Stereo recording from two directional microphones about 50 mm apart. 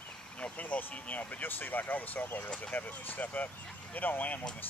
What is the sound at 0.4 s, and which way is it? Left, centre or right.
Speech, left.